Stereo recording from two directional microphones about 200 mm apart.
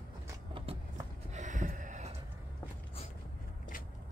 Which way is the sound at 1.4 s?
40° right (ahead or behind).